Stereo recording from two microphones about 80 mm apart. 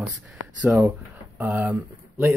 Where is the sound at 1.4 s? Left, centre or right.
Right.